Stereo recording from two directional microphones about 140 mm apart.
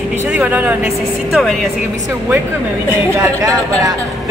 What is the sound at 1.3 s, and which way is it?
Speech, centre (ahead or behind).